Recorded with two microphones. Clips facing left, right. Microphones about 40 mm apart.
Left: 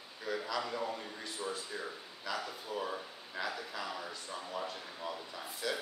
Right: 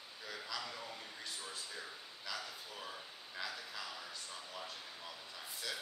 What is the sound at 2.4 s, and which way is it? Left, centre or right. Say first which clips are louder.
Speech: left 9 dB; left.